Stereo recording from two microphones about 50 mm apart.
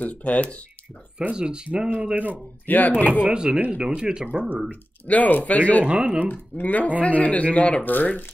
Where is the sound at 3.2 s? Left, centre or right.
Centre.